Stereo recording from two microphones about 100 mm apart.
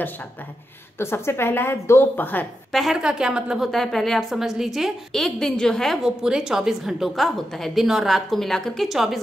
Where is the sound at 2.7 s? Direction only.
Centre (ahead or behind).